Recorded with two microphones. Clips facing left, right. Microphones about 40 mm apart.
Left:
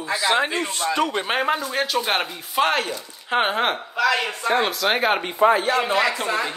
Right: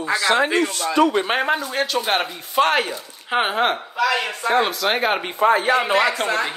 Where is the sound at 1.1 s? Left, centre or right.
Centre.